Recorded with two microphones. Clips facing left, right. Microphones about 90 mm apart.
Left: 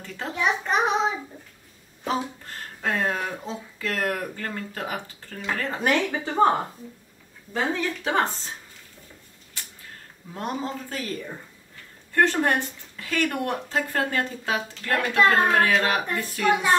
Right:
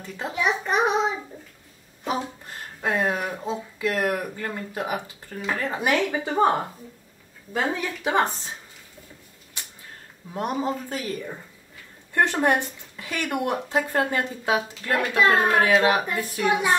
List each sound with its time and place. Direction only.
0.0 s speech: 15° right (ahead or behind)
0.4 s child singing: 5° right (ahead or behind)
2.8 s speech: 15° right (ahead or behind)
7.5 s speech: 15° right (ahead or behind)
10.3 s speech: 15° right (ahead or behind)